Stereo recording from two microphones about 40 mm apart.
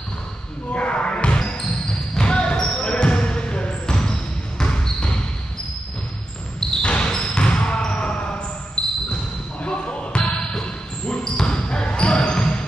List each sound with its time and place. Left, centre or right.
0.7 s basketball bounce: left
6.8 s basketball bounce: left
9.6 s basketball bounce: left
10.3 s basketball bounce: centre